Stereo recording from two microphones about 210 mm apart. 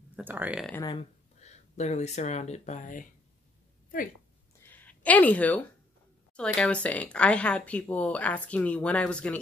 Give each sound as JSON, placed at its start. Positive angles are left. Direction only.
{"t": 0.1, "sound": "speech", "side_deg": -10}
{"t": 0.8, "sound": "speech", "side_deg": 30}
{"t": 4.6, "sound": "a woman's voice", "side_deg": 10}